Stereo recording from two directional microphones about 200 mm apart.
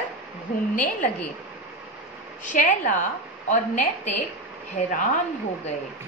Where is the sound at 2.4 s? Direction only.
40° left (ahead or behind).